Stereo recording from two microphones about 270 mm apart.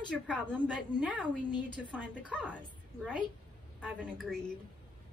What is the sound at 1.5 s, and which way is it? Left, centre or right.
Speech, centre.